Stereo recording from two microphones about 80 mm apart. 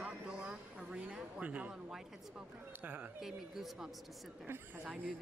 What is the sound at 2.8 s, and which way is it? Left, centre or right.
Speech, right.